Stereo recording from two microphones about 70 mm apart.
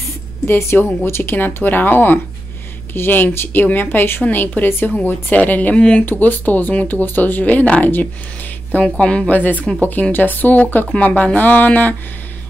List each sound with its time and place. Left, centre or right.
0.0 s speech: left